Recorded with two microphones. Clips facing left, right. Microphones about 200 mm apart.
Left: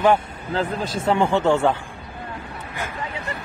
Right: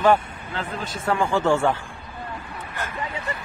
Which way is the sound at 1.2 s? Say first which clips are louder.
Left 1 dB; 20° left (ahead or behind).